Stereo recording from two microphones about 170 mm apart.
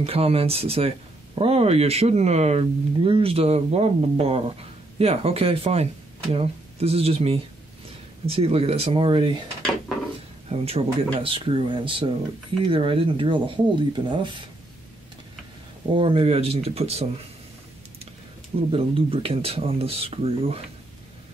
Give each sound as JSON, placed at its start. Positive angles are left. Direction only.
{"t": 0.0, "sound": "speech", "side_deg": -35}
{"t": 10.5, "sound": "speech", "side_deg": -35}
{"t": 15.9, "sound": "speech", "side_deg": -30}
{"t": 18.7, "sound": "speech", "side_deg": -30}